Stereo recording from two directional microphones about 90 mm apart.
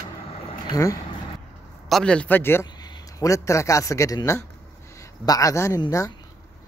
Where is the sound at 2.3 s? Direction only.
25° left (ahead or behind).